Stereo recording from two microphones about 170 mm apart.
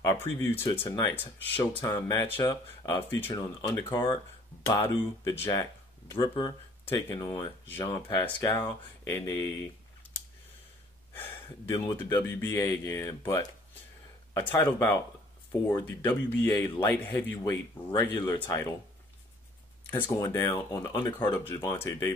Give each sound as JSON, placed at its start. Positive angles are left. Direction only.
{"t": 0.0, "sound": "speech", "side_deg": 15}
{"t": 12.2, "sound": "speech", "side_deg": 15}
{"t": 19.9, "sound": "speech", "side_deg": 15}